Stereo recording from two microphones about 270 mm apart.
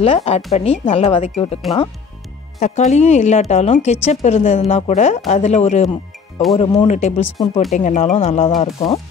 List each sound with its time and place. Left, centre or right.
0.0 s a woman's voice: left
2.6 s a woman's voice: left
7.2 s speech: centre
7.7 s a woman's voice: left